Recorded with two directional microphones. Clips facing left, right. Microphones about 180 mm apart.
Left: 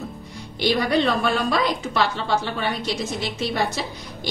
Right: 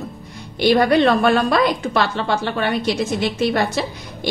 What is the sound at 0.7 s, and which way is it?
A woman's voice, 60° right (ahead or behind).